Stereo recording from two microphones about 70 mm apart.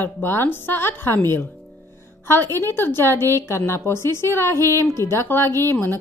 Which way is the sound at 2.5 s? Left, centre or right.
Left.